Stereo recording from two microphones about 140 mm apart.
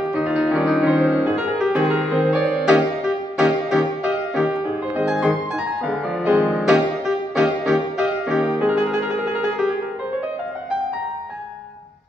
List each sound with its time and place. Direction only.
0.1 s music: 5° right (ahead or behind)